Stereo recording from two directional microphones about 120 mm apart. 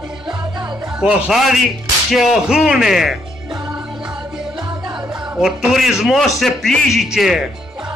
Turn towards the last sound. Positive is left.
turn(degrees=0)  # may be behind; listen again after turning